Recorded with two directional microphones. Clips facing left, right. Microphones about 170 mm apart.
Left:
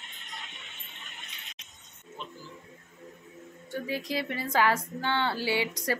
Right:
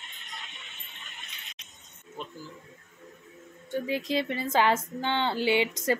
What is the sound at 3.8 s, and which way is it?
Speech, 20° right (ahead or behind).